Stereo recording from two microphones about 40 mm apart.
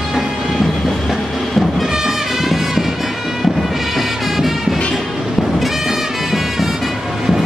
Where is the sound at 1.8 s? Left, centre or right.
Centre.